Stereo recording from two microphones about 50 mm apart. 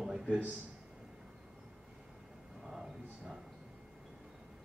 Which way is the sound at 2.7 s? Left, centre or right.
Centre.